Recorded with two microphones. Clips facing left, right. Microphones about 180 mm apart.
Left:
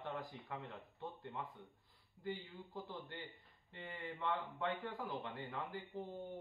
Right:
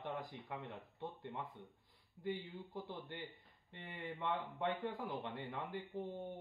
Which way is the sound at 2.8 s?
20° right (ahead or behind).